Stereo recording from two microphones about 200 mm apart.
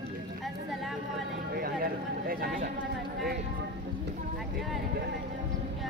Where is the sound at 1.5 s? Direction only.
50° right (ahead or behind).